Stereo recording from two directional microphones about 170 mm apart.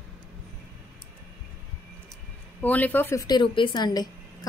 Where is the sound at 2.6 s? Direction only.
10° left (ahead or behind).